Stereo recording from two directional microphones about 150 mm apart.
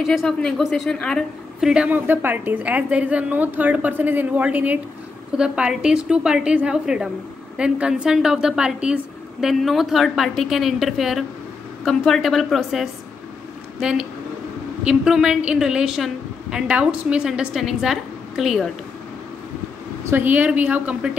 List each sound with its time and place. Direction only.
0.0 s a woman's voice: centre (ahead or behind)
20.1 s a woman's voice: 15° right (ahead or behind)